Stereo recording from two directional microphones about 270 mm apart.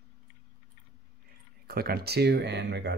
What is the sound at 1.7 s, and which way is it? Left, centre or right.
Speech, right.